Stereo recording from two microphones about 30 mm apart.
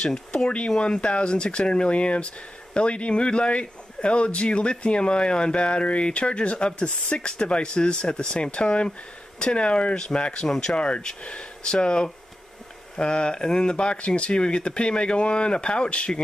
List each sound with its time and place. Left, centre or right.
0.1 s speech: left
10.5 s speech: left
10.8 s speech: left